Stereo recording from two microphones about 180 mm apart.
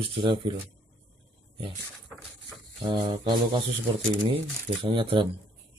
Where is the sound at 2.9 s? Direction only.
25° right (ahead or behind).